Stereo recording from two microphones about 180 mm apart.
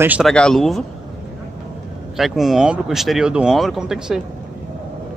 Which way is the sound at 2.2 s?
Centre (ahead or behind).